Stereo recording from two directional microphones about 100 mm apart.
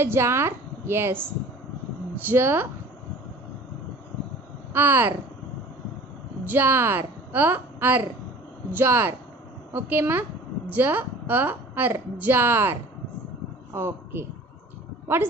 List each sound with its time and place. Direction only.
0.0 s a woman's voice: 25° right (ahead or behind)
2.2 s speech: 25° right (ahead or behind)
4.7 s speech: 20° right (ahead or behind)
6.4 s a woman's voice: 20° right (ahead or behind)
13.7 s speech: 25° right (ahead or behind)